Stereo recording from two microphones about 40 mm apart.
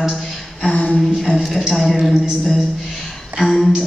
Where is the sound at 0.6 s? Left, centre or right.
Left.